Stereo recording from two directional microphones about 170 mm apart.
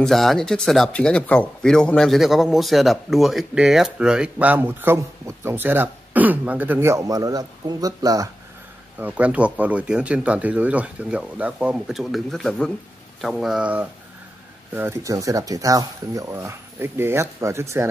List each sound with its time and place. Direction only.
0.0 s speech: centre (ahead or behind); by 8.3 s 20° right (ahead or behind)
8.9 s speech: 10° right (ahead or behind)